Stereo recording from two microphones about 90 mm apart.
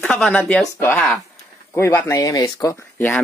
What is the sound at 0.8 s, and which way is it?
Speech, 20° left (ahead or behind).